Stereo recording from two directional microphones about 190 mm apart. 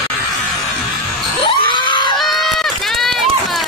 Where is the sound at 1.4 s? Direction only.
25° left (ahead or behind).